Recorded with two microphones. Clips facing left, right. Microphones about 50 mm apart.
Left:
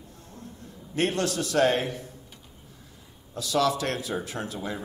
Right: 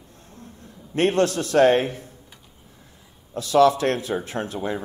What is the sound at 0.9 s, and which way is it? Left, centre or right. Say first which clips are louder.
A man's voice: right 6 dB; right.